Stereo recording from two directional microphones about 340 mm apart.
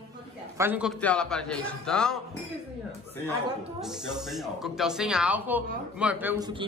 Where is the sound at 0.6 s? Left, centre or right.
Centre.